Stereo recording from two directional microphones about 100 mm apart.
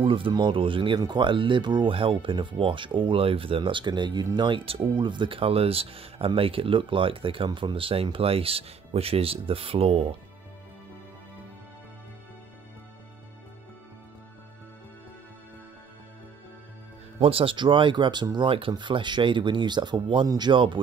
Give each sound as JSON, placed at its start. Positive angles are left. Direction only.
{"t": 0.0, "sound": "speech", "side_deg": -60}
{"t": 17.2, "sound": "speech", "side_deg": -70}